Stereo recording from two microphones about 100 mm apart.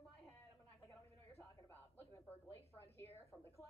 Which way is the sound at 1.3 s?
20° left (ahead or behind).